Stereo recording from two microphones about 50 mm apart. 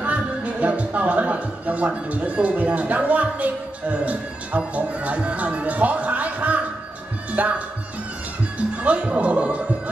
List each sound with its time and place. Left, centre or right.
0.0 s a man's voice: right